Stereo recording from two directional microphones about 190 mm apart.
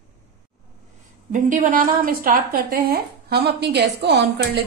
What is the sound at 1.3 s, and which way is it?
A woman's voice, 45° right (ahead or behind).